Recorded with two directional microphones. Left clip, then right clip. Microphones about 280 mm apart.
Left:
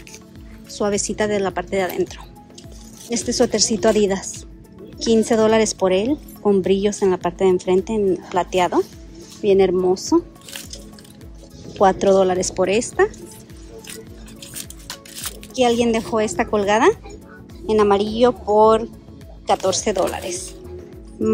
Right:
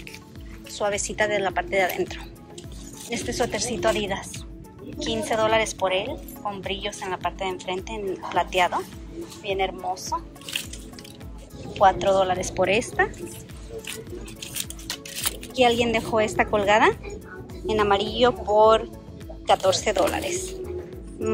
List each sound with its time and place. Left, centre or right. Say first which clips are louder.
0.7 s a woman's voice: left 3 dB; centre
11.8 s speech: left 4 dB; left
14.4 s music: even; centre
15.5 s a woman's voice: left 3 dB; centre